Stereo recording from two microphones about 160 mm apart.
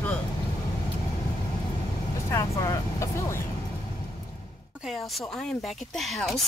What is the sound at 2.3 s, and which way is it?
Speech, 20° left (ahead or behind).